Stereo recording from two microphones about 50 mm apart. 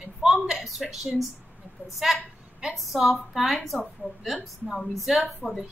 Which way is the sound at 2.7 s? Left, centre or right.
Centre.